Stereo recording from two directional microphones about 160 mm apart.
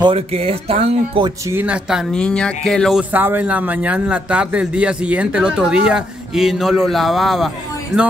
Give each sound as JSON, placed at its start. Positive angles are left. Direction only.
{"t": 0.0, "sound": "speech", "side_deg": -35}
{"t": 1.5, "sound": "speech", "side_deg": -10}